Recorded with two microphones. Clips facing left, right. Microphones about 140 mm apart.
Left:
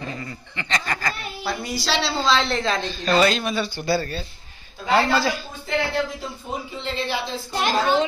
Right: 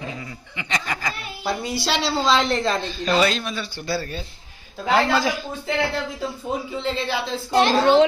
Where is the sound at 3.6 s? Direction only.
65° left (ahead or behind).